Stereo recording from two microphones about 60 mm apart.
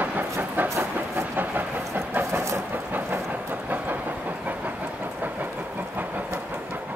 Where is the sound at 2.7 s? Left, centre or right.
Right.